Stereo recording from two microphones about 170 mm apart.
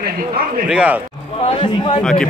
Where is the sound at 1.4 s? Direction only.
30° left (ahead or behind).